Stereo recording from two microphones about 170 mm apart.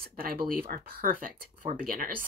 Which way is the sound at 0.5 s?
55° right (ahead or behind).